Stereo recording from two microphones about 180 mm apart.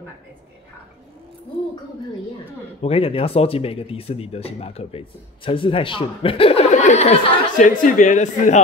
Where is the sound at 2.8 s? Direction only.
30° left (ahead or behind).